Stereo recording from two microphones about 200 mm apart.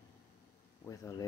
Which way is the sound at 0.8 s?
15° left (ahead or behind).